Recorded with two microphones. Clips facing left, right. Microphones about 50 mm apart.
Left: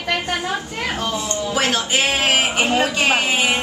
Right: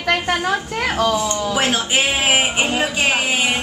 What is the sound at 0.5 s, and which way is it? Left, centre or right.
A woman's voice, right.